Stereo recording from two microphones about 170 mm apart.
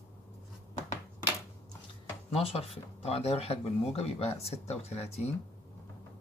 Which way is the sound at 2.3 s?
35° left (ahead or behind).